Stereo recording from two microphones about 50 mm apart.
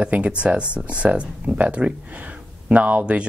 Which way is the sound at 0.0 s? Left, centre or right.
Right.